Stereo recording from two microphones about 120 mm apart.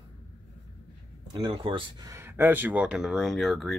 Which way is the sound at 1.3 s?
40° right (ahead or behind).